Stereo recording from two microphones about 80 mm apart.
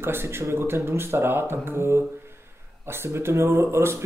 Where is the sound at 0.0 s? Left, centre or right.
Right.